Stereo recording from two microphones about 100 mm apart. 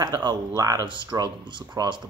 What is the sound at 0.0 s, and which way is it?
Speech, 45° right (ahead or behind).